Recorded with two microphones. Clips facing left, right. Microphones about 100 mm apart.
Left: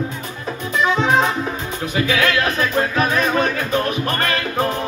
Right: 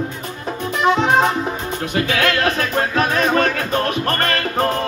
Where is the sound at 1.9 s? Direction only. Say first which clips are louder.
Left 1 dB; 50° right (ahead or behind).